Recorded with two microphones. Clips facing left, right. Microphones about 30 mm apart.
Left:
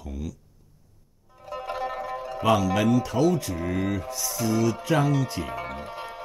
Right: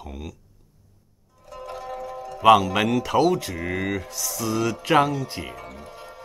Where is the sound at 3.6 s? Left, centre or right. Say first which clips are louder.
Right 1 dB; right.